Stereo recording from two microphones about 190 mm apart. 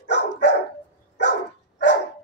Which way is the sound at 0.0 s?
65° left (ahead or behind).